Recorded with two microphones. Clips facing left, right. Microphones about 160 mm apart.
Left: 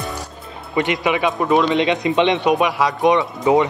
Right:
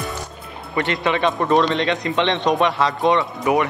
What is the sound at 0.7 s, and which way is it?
Speech, 15° left (ahead or behind).